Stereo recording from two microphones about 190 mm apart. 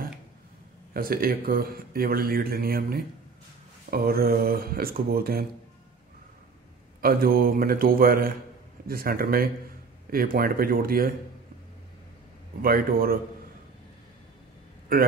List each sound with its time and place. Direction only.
0.9 s speech: 50° right (ahead or behind)
7.0 s speech: 50° right (ahead or behind)
12.6 s speech: 50° right (ahead or behind)